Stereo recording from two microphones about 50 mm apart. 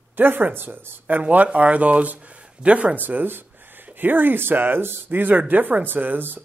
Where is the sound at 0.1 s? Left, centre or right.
Right.